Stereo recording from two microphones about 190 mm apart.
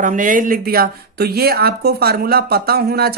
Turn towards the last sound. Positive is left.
turn(degrees=-55)  # may be behind; listen again after turning